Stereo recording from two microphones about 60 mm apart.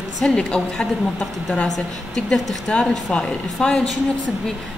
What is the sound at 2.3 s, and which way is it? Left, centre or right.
A woman's voice, centre.